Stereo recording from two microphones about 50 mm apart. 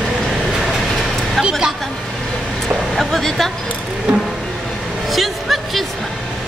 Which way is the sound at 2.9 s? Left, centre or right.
Centre.